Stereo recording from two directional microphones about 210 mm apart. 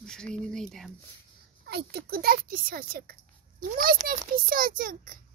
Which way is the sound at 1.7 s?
50° right (ahead or behind).